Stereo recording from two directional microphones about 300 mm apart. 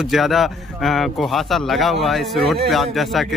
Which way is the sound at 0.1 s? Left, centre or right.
Centre.